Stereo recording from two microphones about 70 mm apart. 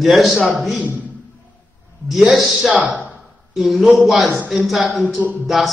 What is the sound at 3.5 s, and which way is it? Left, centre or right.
A man's voice, centre.